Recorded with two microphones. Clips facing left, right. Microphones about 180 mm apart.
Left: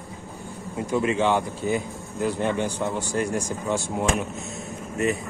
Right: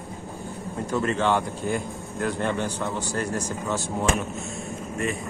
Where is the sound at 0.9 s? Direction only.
10° left (ahead or behind).